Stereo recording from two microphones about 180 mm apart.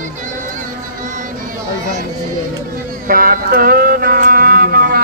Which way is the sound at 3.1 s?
50° right (ahead or behind).